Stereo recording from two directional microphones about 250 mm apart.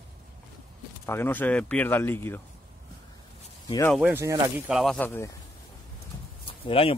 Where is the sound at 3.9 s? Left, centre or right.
Centre.